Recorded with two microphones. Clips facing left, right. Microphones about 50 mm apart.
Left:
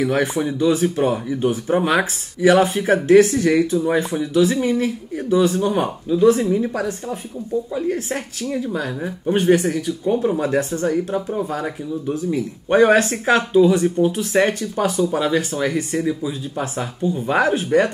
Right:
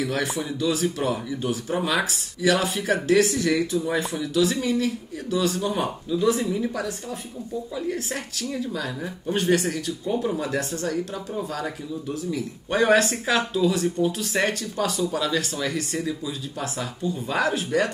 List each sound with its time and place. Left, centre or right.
0.0 s speech: left